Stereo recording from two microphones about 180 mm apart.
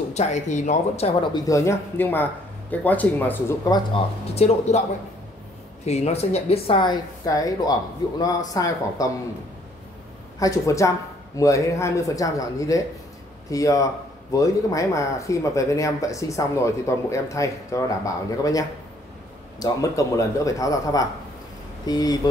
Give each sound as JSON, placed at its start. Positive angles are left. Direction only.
{"t": 0.1, "sound": "speech", "side_deg": 40}
{"t": 1.3, "sound": "speech", "side_deg": 20}
{"t": 4.4, "sound": "speech", "side_deg": 40}
{"t": 5.9, "sound": "speech", "side_deg": 35}
{"t": 10.4, "sound": "speech", "side_deg": 15}